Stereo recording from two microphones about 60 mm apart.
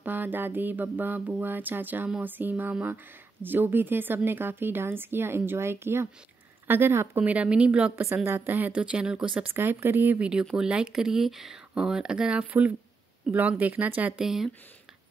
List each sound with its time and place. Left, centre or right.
0.0 s a woman's voice: right
7.2 s speech: right
7.9 s a woman's voice: right
8.5 s speech: right
9.5 s a woman's voice: right
10.1 s speech: centre
14.2 s speech: centre